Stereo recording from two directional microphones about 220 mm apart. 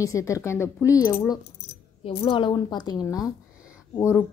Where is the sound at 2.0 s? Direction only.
25° left (ahead or behind).